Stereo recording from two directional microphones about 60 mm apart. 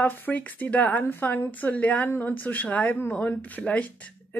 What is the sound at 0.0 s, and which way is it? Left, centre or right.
A woman's voice, left.